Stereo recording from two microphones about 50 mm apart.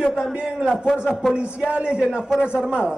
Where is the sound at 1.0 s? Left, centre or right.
Centre.